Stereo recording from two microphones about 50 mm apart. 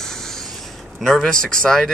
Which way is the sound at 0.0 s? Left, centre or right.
Centre.